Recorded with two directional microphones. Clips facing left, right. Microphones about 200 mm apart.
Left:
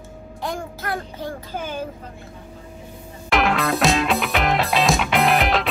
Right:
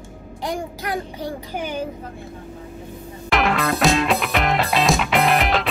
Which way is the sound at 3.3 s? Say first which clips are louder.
Even; centre (ahead or behind).